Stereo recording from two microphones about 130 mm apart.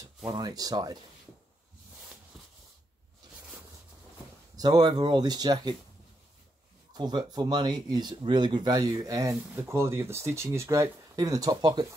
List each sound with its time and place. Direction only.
0.3 s speech: 30° right (ahead or behind)
4.6 s speech: 30° right (ahead or behind)
6.9 s speech: 35° right (ahead or behind)